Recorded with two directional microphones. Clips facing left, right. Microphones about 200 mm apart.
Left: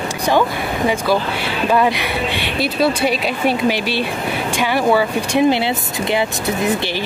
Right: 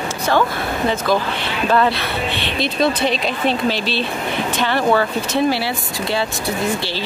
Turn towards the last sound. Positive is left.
turn(degrees=20)  # may be behind; listen again after turning